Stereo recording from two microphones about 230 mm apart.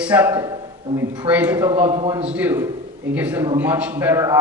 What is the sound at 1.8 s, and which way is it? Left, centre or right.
Speech, right.